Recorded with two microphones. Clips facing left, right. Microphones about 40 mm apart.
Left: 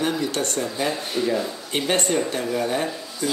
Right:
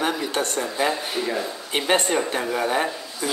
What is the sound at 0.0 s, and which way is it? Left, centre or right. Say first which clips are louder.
Speech: even; centre.